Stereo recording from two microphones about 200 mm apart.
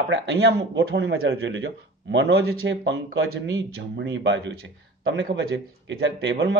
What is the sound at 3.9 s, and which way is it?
Speech, 60° right (ahead or behind).